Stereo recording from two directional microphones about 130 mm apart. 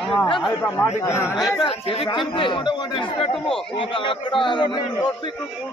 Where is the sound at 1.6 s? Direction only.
45° left (ahead or behind).